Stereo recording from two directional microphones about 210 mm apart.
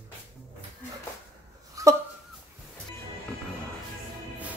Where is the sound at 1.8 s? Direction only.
15° right (ahead or behind).